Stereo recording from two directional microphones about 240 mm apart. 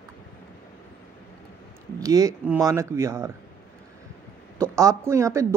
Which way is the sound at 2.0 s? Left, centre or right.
Centre.